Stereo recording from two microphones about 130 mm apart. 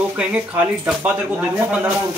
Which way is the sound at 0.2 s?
10° right (ahead or behind).